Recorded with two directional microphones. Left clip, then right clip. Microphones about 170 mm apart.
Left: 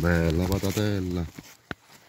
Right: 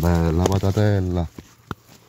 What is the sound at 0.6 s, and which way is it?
Speech, 45° right (ahead or behind).